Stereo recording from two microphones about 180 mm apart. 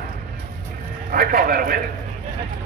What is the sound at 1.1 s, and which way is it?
Speech, 55° right (ahead or behind).